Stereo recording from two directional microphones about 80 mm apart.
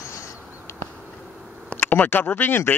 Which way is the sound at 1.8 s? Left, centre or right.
Left.